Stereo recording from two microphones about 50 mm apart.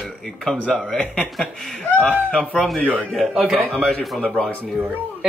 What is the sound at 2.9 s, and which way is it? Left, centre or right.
Speech, left.